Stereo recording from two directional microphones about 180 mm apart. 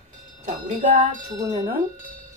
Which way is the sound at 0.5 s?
35° right (ahead or behind).